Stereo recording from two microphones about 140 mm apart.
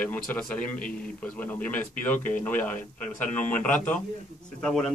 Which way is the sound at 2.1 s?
65° left (ahead or behind).